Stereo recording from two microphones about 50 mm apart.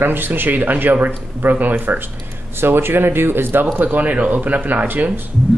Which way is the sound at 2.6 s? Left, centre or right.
Right.